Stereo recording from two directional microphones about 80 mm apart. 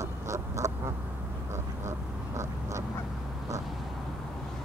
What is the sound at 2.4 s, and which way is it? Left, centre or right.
Duck, right.